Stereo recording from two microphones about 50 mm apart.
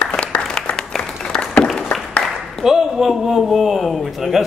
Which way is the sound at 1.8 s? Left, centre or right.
Centre.